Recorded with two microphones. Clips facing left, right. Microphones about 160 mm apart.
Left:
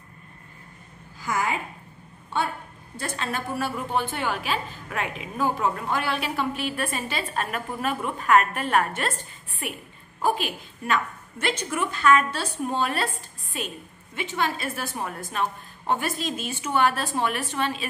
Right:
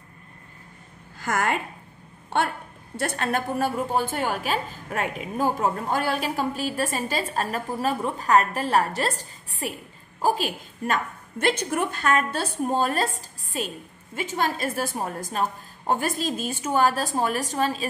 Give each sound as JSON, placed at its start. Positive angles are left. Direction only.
{"t": 1.2, "sound": "a woman's voice", "side_deg": -65}
{"t": 2.2, "sound": "a sound", "side_deg": -70}
{"t": 3.2, "sound": "a woman's voice", "side_deg": -50}